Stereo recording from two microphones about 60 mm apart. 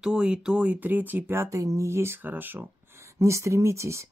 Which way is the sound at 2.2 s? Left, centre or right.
Right.